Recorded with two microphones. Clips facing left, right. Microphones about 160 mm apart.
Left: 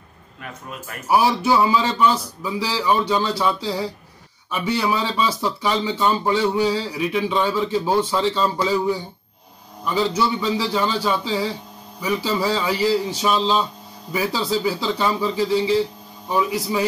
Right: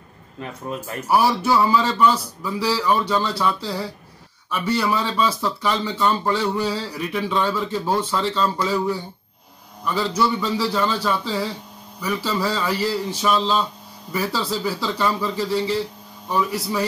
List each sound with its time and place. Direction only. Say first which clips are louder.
0.4 s speech: right 6 dB; 30° right (ahead or behind)
1.1 s speech: left 1 dB; 15° left (ahead or behind)
4.5 s speech: right 1 dB; 15° left (ahead or behind)
4.8 s speech: even; 5° left (ahead or behind)
9.9 s a man's voice: left 1 dB; centre (ahead or behind)